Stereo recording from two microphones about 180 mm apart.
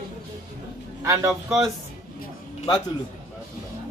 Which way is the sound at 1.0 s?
15° right (ahead or behind).